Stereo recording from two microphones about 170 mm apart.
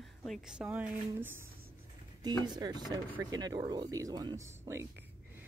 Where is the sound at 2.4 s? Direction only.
25° right (ahead or behind).